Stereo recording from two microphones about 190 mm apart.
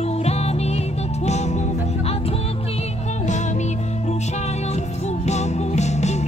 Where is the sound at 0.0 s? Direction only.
35° left (ahead or behind).